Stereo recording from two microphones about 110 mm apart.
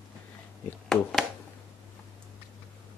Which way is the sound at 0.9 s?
Centre (ahead or behind).